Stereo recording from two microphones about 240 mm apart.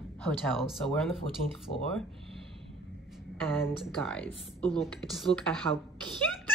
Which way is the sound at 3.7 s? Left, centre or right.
Centre.